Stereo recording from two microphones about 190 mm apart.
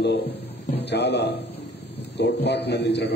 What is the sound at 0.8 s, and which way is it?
A man's voice, 65° left (ahead or behind).